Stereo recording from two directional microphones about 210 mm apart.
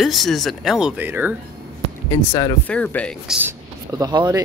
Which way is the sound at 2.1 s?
20° left (ahead or behind).